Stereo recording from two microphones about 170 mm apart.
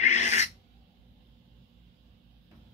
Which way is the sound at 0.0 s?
45° left (ahead or behind).